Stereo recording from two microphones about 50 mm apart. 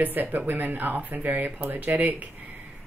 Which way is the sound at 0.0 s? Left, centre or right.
Right.